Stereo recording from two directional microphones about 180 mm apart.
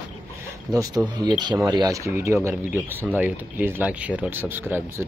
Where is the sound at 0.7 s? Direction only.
20° right (ahead or behind).